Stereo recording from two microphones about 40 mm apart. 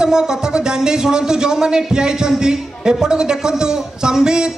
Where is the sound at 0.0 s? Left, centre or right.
Centre.